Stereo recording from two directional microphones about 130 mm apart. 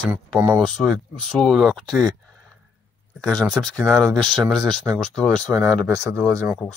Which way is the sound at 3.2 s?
5° left (ahead or behind).